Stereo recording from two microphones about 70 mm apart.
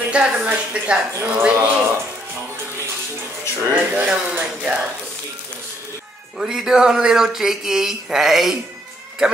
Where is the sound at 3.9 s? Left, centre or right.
Right.